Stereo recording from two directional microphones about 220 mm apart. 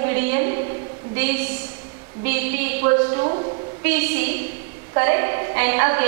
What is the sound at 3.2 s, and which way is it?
Speech, 30° right (ahead or behind).